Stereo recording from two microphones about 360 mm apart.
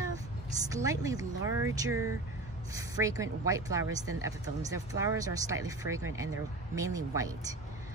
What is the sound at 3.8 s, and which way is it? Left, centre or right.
Speech, right.